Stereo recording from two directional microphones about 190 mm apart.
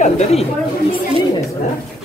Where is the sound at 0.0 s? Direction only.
35° left (ahead or behind).